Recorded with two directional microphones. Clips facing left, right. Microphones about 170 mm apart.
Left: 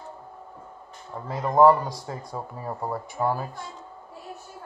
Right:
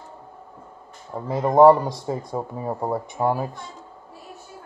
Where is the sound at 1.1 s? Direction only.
25° right (ahead or behind).